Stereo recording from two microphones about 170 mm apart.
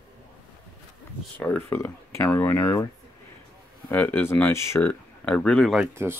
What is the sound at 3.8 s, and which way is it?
Speech, 10° left (ahead or behind).